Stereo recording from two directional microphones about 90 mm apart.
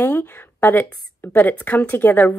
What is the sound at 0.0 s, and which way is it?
A woman's voice, 20° left (ahead or behind).